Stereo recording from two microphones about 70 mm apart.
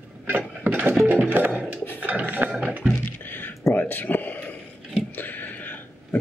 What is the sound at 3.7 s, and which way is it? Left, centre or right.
Speech, left.